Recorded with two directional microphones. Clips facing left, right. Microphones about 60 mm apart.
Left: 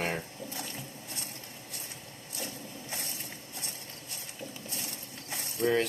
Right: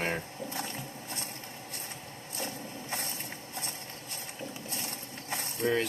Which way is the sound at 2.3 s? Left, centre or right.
Right.